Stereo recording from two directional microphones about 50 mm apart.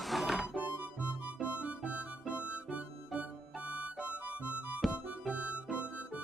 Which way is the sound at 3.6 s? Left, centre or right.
Right.